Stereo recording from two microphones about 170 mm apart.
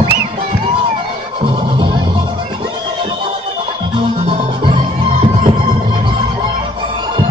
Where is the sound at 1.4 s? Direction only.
30° right (ahead or behind).